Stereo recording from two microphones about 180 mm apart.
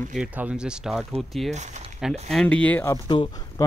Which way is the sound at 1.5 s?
40° right (ahead or behind).